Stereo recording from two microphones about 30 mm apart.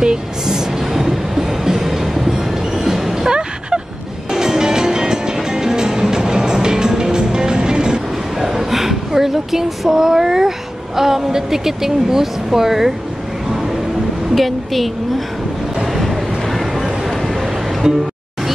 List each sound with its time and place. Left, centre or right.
0.0 s train: right
2.7 s music: centre
3.3 s vehicle: right
4.3 s music: centre
8.4 s a sound: centre
11.0 s speech: centre
14.3 s a woman's voice: centre
15.9 s vehicle: centre